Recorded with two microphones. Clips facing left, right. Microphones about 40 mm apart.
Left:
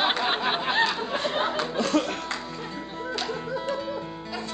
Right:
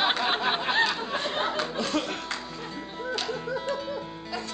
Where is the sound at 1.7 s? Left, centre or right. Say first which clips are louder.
Left 8 dB; centre.